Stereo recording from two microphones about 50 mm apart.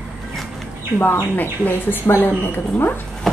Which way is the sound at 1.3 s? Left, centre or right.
Left.